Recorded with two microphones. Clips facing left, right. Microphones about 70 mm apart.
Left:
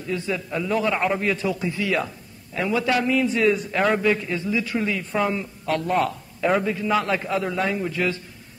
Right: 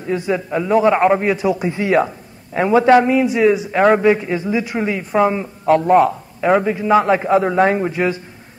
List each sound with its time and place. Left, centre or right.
0.1 s a man's voice: right
1.3 s a man's voice: centre
4.0 s a man's voice: right
5.9 s speech: centre
6.5 s a man's voice: right
7.9 s a man's voice: right